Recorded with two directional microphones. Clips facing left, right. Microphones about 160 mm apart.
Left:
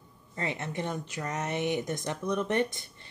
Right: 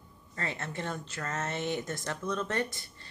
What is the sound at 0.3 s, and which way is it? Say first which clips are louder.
Speech: left 3 dB; 20° left (ahead or behind).